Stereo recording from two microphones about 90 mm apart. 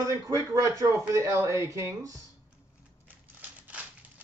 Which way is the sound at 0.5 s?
35° right (ahead or behind).